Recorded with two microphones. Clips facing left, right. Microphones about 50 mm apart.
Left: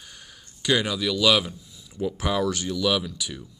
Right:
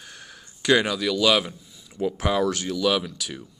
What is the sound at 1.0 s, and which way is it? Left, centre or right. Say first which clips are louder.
Speech: right 1 dB; centre.